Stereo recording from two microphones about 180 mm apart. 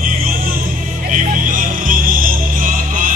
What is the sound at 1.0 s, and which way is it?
Music, 45° right (ahead or behind).